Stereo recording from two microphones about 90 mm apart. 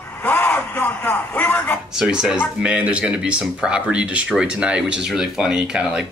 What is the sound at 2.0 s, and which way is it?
Speech, 5° right (ahead or behind).